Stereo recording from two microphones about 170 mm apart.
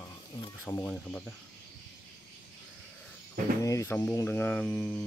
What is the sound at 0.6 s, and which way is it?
Speech, 5° left (ahead or behind).